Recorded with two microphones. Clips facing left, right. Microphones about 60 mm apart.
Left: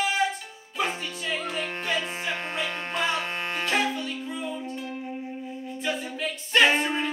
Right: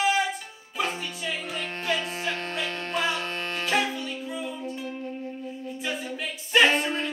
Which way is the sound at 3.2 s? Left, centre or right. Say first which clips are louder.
Left 1 dB; centre.